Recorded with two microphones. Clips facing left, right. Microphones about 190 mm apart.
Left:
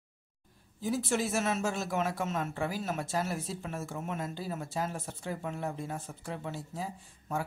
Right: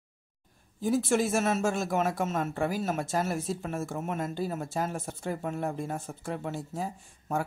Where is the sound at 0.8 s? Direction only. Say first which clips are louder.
Right 5 dB; 50° right (ahead or behind).